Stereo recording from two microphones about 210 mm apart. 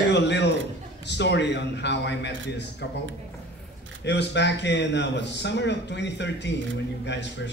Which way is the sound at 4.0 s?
55° left (ahead or behind).